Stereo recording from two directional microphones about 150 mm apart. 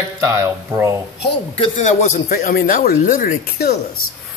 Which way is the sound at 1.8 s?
55° left (ahead or behind).